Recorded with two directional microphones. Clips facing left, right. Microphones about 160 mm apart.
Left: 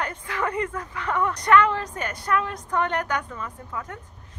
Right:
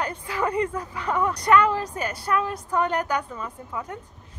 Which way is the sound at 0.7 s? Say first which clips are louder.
Right 1 dB; 15° right (ahead or behind).